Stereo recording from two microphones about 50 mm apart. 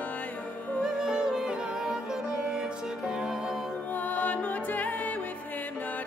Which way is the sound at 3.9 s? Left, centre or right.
Left.